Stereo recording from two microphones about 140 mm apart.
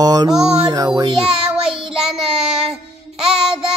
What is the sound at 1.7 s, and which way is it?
Child singing, 40° right (ahead or behind).